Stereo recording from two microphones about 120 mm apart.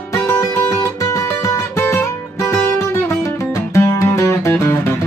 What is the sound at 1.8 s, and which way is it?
Music, 20° left (ahead or behind).